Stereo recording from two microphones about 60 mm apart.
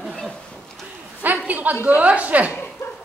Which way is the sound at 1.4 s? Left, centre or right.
Right.